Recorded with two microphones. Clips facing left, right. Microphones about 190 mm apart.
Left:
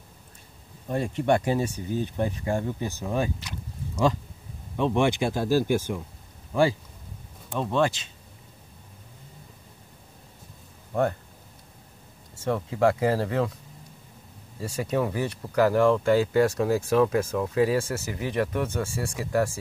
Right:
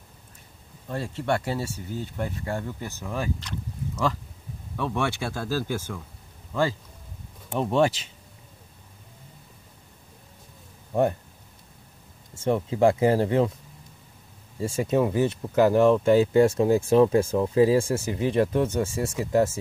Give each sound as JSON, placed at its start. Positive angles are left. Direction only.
{"t": 0.8, "sound": "speech", "side_deg": 15}
{"t": 4.7, "sound": "speech", "side_deg": 20}
{"t": 7.4, "sound": "speech", "side_deg": -20}
{"t": 10.9, "sound": "speech", "side_deg": -15}
{"t": 12.4, "sound": "speech", "side_deg": -25}
{"t": 14.6, "sound": "speech", "side_deg": -20}